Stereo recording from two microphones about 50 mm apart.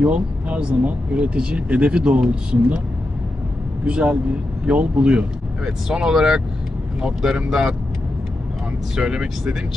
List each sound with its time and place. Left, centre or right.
0.0 s speech: right
3.8 s speech: right
5.9 s speech: centre
8.9 s speech: centre